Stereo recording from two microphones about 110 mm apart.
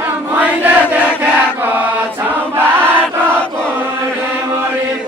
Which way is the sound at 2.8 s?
20° right (ahead or behind).